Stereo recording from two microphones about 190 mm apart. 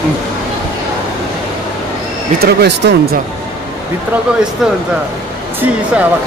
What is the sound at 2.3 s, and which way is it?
Speech, 60° right (ahead or behind).